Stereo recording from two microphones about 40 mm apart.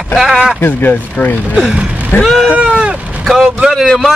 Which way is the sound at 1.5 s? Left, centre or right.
Right.